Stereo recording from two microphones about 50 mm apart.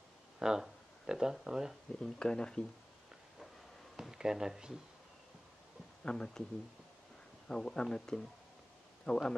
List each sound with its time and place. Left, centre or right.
0.4 s speech: centre
2.0 s speech: centre
4.0 s speech: centre
6.0 s speech: centre
7.4 s speech: centre